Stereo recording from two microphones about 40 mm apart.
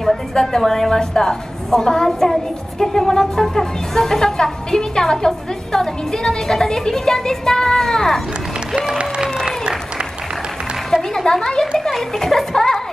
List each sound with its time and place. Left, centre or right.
0.3 s speech: centre
2.0 s speech: centre
9.2 s applause: centre
10.9 s a sound: centre
11.9 s speech: centre